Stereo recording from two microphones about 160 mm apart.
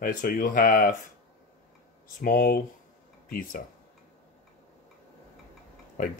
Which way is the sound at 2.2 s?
65° left (ahead or behind).